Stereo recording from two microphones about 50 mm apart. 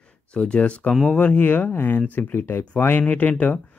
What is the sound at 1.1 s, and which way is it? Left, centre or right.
Speech, left.